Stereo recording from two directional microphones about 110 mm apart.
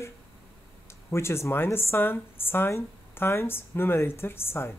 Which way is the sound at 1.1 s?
25° left (ahead or behind).